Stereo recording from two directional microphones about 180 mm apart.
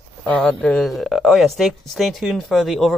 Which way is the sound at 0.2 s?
5° left (ahead or behind).